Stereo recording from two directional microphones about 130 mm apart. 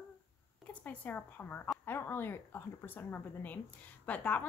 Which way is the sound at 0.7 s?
10° left (ahead or behind).